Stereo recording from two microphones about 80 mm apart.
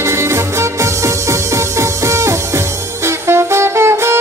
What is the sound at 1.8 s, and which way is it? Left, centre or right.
Music, right.